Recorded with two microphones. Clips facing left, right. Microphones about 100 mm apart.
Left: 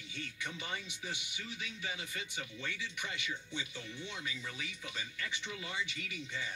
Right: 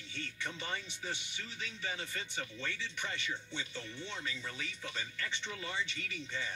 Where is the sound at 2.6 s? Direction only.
10° left (ahead or behind).